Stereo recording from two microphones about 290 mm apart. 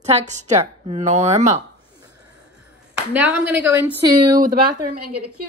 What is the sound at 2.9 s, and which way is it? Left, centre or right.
Speech, centre.